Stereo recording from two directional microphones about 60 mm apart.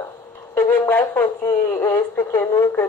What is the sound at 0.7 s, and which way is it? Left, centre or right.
A woman's voice, left.